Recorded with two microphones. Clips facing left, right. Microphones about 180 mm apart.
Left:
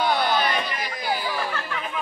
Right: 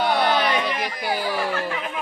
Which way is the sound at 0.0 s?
65° right (ahead or behind).